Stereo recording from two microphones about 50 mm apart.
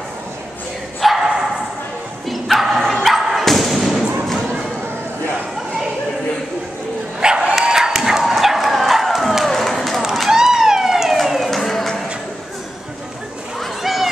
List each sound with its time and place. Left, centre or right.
1.0 s dog: centre
2.2 s bow-wow: centre
2.8 s dog: centre
3.4 s thump: centre
7.2 s crowd: centre
10.3 s a sound: centre
13.6 s a sound: centre